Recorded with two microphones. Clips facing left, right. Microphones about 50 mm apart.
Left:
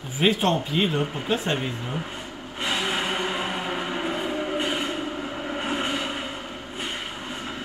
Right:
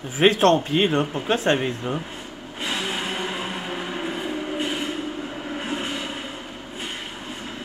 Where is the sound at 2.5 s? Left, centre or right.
Centre.